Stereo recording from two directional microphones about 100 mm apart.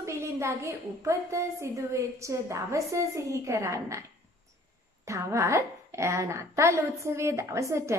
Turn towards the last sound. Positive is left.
turn(degrees=-30)  # may be behind; listen again after turning